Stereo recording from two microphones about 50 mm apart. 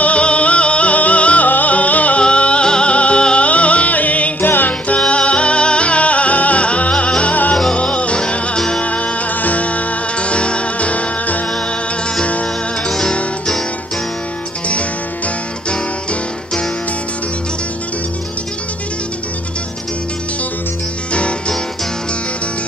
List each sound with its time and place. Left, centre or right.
0.0 s music: left
8.8 s music: left
14.7 s music: left
21.1 s music: left